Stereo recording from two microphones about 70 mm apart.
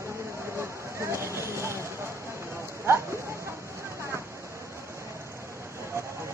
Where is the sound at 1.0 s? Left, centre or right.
Right.